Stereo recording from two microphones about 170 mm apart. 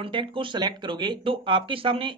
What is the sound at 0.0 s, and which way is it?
Speech, 30° right (ahead or behind).